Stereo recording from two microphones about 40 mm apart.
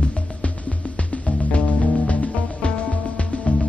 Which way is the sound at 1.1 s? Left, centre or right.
Left.